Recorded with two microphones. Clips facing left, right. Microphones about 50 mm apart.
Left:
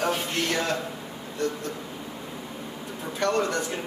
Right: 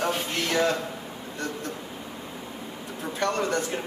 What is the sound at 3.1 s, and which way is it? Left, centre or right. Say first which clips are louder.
Speech: left 1 dB; right.